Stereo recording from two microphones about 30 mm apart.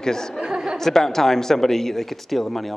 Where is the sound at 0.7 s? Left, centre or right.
Centre.